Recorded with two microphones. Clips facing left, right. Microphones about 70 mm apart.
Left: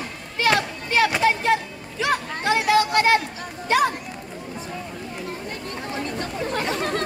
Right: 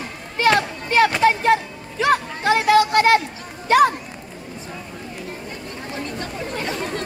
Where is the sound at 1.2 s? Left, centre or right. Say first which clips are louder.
Right 4 dB; right.